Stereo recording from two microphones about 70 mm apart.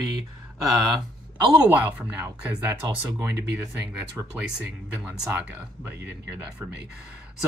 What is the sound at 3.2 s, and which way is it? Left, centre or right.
Speech, right.